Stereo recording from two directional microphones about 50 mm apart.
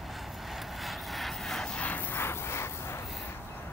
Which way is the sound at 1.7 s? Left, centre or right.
Left.